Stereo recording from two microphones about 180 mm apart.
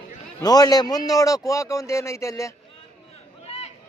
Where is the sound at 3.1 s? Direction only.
35° left (ahead or behind).